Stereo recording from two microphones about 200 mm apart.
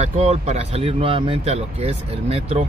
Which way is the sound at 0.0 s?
35° right (ahead or behind).